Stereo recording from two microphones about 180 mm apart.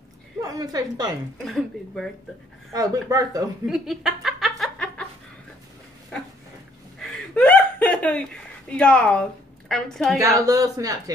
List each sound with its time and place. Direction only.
0.4 s a woman's voice: 20° right (ahead or behind)
1.4 s speech: centre (ahead or behind)
2.7 s speech: 20° right (ahead or behind)
3.6 s a sound: centre (ahead or behind)
7.0 s a sound: 5° left (ahead or behind)
9.7 s speech: 5° left (ahead or behind)
10.1 s speech: 20° right (ahead or behind)